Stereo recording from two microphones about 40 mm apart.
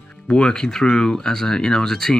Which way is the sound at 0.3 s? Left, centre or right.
Left.